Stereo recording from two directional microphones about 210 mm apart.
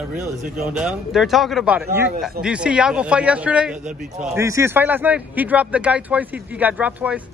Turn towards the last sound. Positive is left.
turn(degrees=-5)  # may be behind; listen again after turning